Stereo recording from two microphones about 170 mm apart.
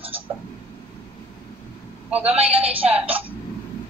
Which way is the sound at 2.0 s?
10° right (ahead or behind).